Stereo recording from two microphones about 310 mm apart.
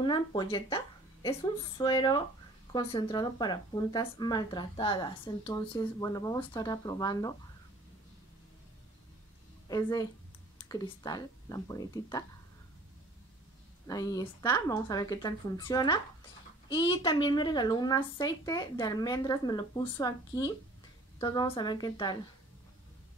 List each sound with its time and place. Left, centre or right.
0.0 s a woman's voice: centre
9.7 s a woman's voice: centre
13.8 s speech: centre